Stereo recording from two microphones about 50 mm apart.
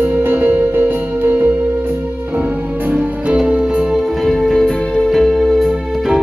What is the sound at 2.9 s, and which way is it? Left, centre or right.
Music, right.